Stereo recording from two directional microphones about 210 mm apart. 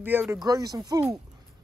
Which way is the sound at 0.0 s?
10° right (ahead or behind).